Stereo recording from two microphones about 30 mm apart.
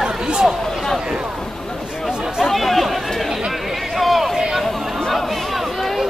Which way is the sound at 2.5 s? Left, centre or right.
Centre.